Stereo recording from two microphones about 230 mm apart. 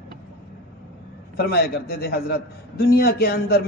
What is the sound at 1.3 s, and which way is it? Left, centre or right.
A man's voice, left.